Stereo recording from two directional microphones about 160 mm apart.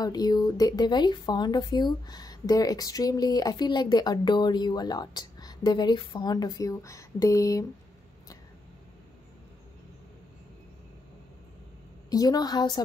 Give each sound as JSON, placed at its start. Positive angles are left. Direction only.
{"t": 0.0, "sound": "speech", "side_deg": 25}
{"t": 12.1, "sound": "speech", "side_deg": 25}